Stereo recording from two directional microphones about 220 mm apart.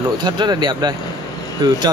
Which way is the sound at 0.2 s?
20° right (ahead or behind).